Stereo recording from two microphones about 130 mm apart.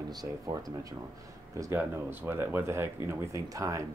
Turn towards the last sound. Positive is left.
turn(degrees=-25)  # may be behind; listen again after turning